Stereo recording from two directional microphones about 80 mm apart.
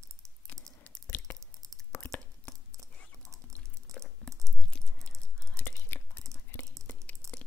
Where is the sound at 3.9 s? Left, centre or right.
Right.